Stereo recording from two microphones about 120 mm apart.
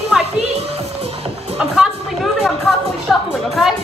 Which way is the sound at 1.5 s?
5° right (ahead or behind).